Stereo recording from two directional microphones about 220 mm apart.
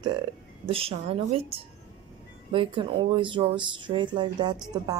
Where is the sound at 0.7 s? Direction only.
25° right (ahead or behind).